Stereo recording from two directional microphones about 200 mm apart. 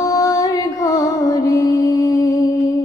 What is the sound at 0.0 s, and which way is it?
Music, 15° left (ahead or behind).